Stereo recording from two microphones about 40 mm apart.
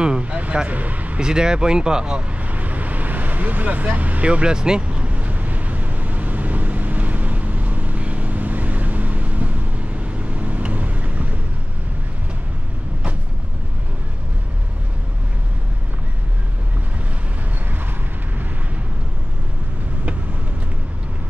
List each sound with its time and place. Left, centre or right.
0.2 s a sound: right
0.7 s speech: right
1.2 s speech: centre
2.4 s vehicle: right
4.8 s vehicle: right